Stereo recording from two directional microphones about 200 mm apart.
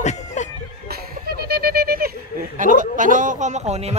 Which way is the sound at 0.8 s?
50° right (ahead or behind).